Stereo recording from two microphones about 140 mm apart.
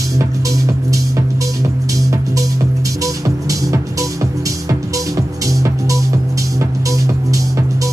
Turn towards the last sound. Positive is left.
turn(degrees=-25)  # may be behind; listen again after turning